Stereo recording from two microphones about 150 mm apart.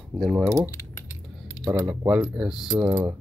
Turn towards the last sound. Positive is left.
turn(degrees=-15)  # may be behind; listen again after turning